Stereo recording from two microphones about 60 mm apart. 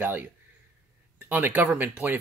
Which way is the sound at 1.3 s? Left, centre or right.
Right.